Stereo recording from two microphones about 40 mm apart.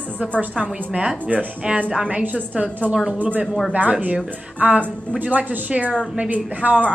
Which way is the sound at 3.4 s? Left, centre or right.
Centre.